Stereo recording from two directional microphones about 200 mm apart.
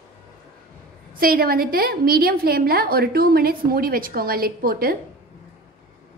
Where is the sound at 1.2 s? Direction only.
50° right (ahead or behind).